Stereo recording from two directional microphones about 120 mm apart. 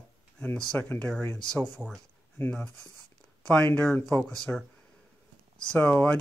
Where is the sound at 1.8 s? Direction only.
10° right (ahead or behind).